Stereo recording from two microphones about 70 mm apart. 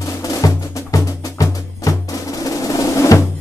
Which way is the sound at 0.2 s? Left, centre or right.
Left.